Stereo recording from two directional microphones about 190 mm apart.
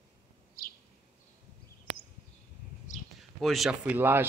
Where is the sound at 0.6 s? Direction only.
55° left (ahead or behind).